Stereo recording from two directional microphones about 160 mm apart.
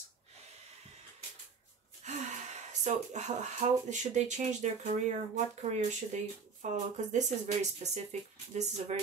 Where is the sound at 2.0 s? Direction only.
45° right (ahead or behind).